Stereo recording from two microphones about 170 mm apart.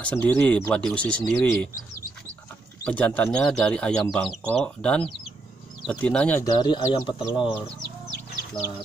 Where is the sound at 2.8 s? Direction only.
10° left (ahead or behind).